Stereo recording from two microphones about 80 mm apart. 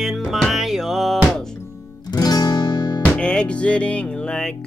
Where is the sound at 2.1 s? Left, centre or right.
Left.